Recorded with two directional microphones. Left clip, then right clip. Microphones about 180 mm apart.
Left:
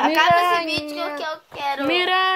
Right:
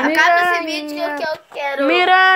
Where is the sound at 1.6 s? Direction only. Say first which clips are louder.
Right 4 dB; 45° left (ahead or behind).